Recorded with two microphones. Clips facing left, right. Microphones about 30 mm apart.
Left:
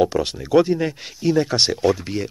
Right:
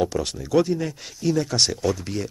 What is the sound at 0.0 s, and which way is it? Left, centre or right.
Speech, left.